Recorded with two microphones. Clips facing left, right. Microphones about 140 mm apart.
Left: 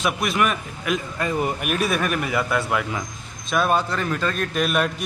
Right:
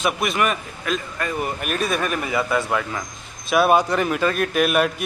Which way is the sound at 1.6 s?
5° left (ahead or behind).